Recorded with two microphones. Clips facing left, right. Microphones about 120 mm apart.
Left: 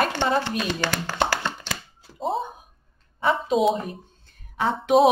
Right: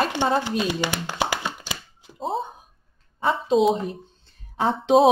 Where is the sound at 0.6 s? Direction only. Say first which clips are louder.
Right 1 dB; 15° right (ahead or behind).